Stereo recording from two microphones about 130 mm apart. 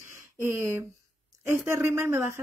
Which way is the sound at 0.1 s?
20° right (ahead or behind).